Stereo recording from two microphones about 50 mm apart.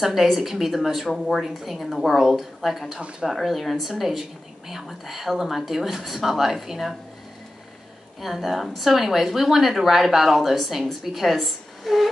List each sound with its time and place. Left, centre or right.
0.0 s a woman's voice: centre
3.0 s speech: right
3.3 s a woman's voice: centre
8.2 s a woman's voice: centre